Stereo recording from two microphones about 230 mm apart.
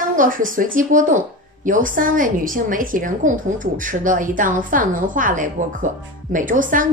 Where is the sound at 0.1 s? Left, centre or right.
Right.